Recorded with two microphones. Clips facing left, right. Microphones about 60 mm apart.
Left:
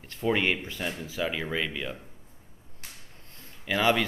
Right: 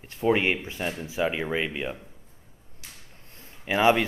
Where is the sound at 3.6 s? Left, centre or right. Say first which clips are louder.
Right 4 dB; right.